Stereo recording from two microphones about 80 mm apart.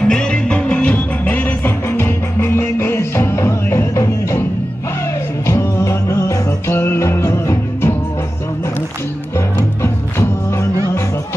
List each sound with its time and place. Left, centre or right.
0.0 s music: centre; by 4.5 s left
5.5 s music: left
9.6 s music: left